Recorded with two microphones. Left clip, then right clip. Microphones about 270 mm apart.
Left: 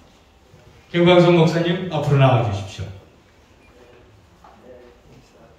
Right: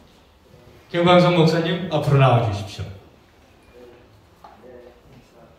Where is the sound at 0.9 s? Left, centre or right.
Right.